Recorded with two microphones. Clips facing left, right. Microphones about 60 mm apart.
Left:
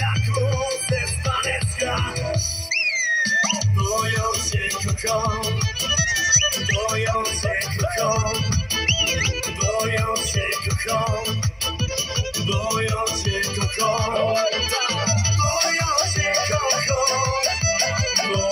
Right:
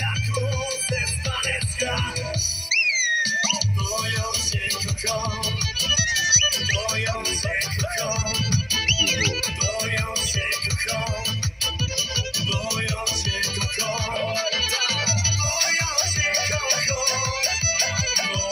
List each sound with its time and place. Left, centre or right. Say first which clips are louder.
0.5 s music: left 4 dB; left
2.7 s music: even; left
7.4 s music: left 3 dB; left
9.2 s music: left 1 dB; left
12.4 s music: left 6 dB; left